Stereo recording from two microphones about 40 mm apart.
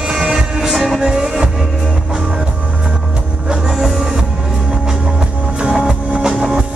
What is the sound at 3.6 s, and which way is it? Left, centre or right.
Music, centre.